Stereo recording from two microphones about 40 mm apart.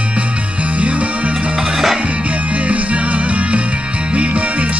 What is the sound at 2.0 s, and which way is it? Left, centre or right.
Music, right.